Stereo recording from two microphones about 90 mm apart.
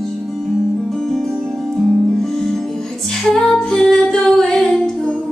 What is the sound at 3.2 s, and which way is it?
Music, 5° left (ahead or behind).